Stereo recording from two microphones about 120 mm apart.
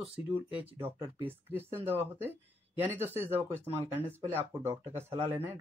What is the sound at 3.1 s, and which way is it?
Speech, 20° right (ahead or behind).